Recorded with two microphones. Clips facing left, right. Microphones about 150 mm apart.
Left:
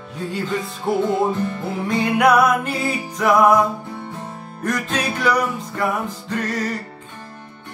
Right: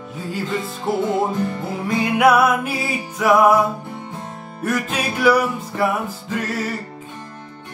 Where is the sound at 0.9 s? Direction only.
Centre (ahead or behind).